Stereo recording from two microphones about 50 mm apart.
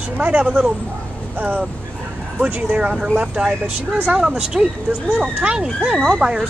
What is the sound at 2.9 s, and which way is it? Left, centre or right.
Speech, centre.